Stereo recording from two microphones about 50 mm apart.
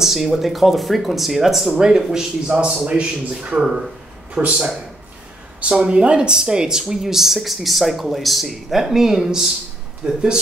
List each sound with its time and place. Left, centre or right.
0.0 s speech: centre
2.4 s a man's voice: right
4.4 s a man's voice: right
5.6 s speech: right
10.0 s a man's voice: right